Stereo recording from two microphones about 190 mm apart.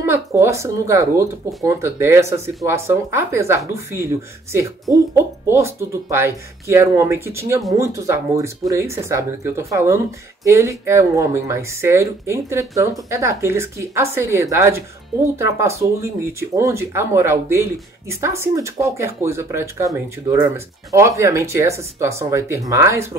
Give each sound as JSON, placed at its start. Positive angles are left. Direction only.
{"t": 0.0, "sound": "speech", "side_deg": -15}